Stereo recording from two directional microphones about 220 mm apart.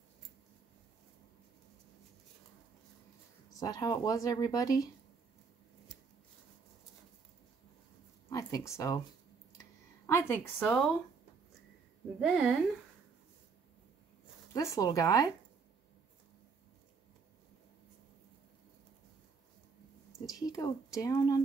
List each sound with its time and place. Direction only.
3.5 s speech: 15° left (ahead or behind)
8.3 s a woman's voice: 15° left (ahead or behind)
9.6 s a sound: 10° left (ahead or behind)
12.2 s speech: centre (ahead or behind)
14.5 s speech: 15° left (ahead or behind)
20.2 s speech: 15° left (ahead or behind)